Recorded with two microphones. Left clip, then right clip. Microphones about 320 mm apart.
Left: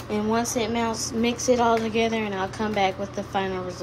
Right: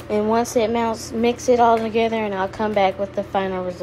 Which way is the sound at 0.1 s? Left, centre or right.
Centre.